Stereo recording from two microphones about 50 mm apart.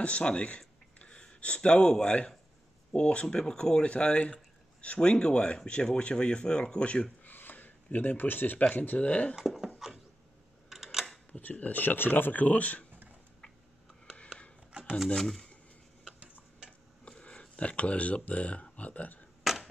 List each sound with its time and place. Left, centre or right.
0.0 s speech: left
7.3 s a sound: left
8.6 s speech: left
9.4 s dog: centre
10.7 s a sound: centre
11.3 s speech: left
14.1 s chopping: left
14.7 s shuffling cards: right
15.1 s speech: centre
17.0 s speech: left
19.4 s a sound: centre